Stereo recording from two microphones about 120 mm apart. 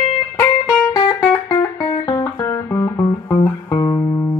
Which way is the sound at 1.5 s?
45° left (ahead or behind).